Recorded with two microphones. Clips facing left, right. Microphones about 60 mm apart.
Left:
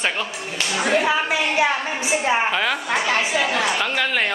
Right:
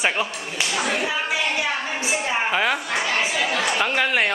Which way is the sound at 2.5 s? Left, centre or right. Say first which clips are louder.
Even; centre.